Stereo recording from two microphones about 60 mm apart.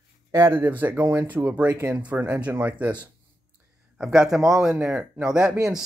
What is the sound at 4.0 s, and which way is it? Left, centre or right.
Speech, centre.